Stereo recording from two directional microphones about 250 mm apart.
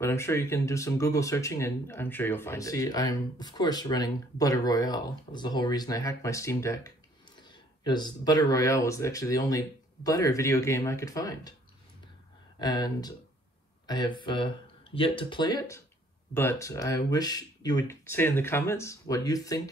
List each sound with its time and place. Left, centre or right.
0.0 s speech: centre
12.5 s speech: centre